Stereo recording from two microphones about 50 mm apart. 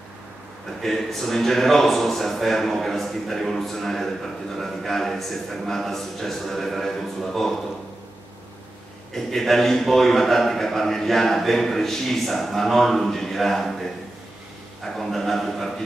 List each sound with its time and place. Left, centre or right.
0.8 s a man's voice: centre
9.1 s a man's voice: centre